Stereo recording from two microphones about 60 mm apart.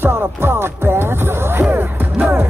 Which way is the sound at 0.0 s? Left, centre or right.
Right.